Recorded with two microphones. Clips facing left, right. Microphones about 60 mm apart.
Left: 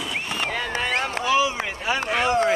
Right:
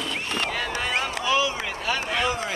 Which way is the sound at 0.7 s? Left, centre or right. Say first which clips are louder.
Left 2 dB; left.